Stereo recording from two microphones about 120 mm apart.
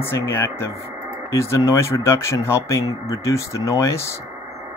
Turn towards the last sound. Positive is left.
turn(degrees=25)  # may be behind; listen again after turning